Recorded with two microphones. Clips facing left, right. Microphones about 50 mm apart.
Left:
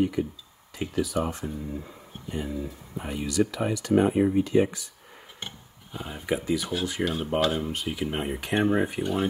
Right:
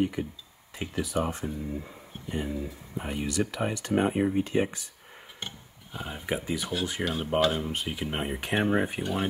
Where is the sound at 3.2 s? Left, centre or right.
Right.